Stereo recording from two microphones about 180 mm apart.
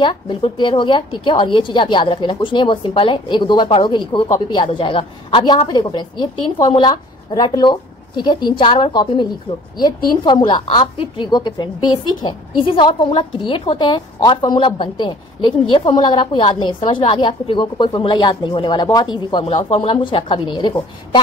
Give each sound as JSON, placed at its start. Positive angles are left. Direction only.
{"t": 0.0, "sound": "a woman's voice", "side_deg": 25}